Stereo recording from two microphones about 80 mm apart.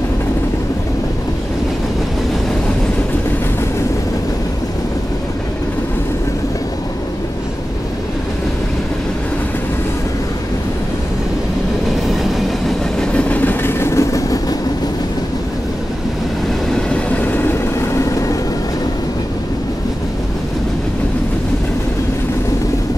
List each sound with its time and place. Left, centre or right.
12.4 s train: centre
13.1 s train: left
16.7 s train: centre
17.9 s vehicle: left